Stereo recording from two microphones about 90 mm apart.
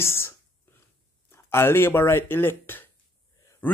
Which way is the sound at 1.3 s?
25° left (ahead or behind).